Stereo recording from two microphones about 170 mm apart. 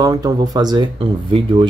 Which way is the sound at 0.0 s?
20° right (ahead or behind).